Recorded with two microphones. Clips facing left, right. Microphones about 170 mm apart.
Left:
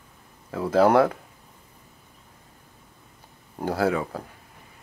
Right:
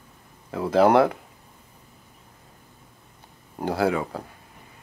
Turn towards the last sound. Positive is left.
turn(degrees=-15)  # may be behind; listen again after turning